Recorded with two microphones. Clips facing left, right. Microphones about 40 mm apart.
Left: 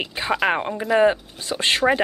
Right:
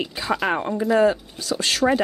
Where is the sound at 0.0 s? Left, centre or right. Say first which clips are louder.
Left 2 dB; left.